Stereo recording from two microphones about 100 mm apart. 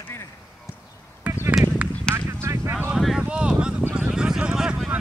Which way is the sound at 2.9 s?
5° right (ahead or behind).